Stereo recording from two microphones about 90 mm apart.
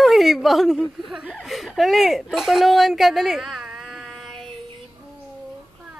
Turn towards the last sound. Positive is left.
turn(degrees=0)  # may be behind; listen again after turning